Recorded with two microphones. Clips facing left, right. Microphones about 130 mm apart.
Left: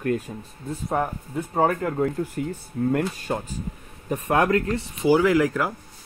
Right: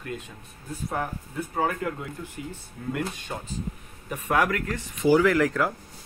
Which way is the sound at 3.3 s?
45° left (ahead or behind).